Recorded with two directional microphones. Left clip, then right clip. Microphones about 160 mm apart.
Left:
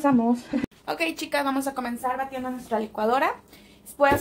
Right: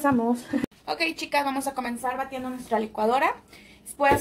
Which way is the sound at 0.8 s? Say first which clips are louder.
Even; 45° left (ahead or behind).